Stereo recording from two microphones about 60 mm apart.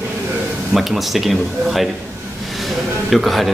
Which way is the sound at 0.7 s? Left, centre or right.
Centre.